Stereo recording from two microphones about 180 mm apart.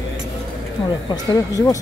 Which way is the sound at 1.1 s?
20° left (ahead or behind).